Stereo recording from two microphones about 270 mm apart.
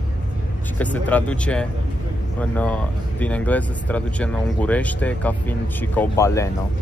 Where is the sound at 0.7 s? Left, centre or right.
Centre.